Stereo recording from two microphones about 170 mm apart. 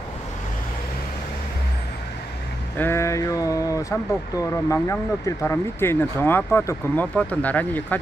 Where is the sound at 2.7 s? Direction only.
15° left (ahead or behind).